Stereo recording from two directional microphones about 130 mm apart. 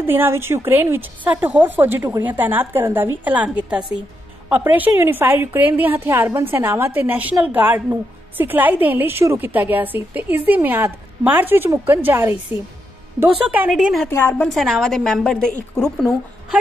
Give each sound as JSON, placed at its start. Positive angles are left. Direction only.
{"t": 0.0, "sound": "a woman's voice", "side_deg": -15}
{"t": 13.7, "sound": "a woman's voice", "side_deg": 0}
{"t": 14.0, "sound": "a woman's voice", "side_deg": 15}
{"t": 14.5, "sound": "a woman's voice", "side_deg": 0}